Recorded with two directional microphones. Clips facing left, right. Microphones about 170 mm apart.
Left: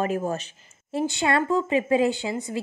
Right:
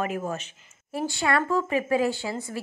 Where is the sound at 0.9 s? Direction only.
20° left (ahead or behind).